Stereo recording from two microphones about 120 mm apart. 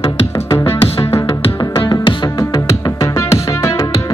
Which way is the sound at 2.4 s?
30° left (ahead or behind).